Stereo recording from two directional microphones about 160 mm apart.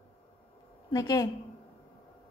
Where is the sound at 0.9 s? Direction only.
25° left (ahead or behind).